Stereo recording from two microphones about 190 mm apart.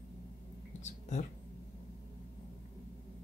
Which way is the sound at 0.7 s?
40° left (ahead or behind).